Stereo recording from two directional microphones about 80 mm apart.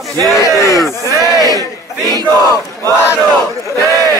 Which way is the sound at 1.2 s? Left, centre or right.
Left.